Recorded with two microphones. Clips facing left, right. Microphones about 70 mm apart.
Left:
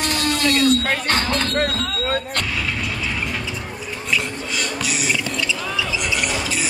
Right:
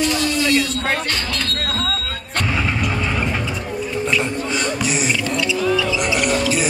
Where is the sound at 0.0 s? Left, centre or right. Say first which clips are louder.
Right 2 dB; left.